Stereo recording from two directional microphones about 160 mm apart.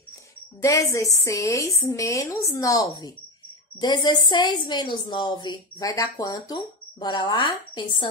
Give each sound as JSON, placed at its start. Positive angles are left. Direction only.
{"t": 0.6, "sound": "a woman's voice", "side_deg": 20}